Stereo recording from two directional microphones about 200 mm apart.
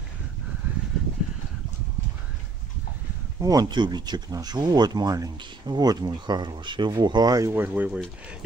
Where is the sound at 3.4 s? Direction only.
20° right (ahead or behind).